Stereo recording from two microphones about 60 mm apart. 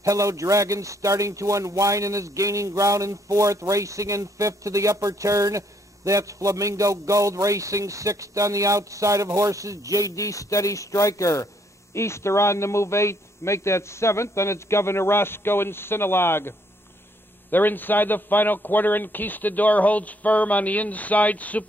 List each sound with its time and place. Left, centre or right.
0.0 s a man's voice: right
10.1 s speech: left
11.9 s a man's voice: left